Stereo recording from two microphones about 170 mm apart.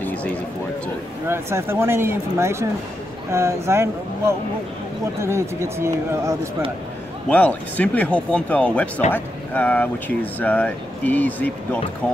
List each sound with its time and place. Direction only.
0.0 s a sound: 10° left (ahead or behind)
1.3 s speech: 15° right (ahead or behind)
7.2 s speech: 10° left (ahead or behind)